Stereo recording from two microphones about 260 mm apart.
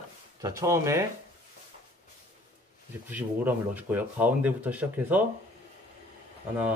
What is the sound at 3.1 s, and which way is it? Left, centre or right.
Speech, centre.